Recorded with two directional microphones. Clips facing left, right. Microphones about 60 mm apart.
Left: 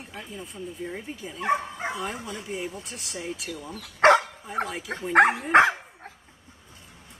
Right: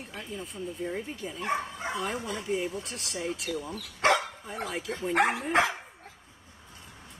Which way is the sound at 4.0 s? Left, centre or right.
Left.